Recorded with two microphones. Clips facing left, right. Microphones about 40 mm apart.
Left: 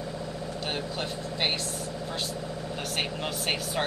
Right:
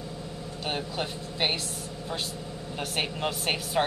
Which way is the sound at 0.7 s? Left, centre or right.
Centre.